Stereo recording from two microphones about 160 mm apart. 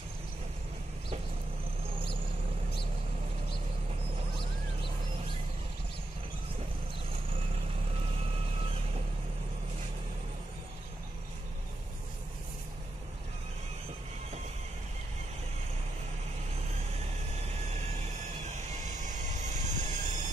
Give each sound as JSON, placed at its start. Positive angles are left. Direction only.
{"t": 18.4, "sound": "vehicle", "side_deg": -50}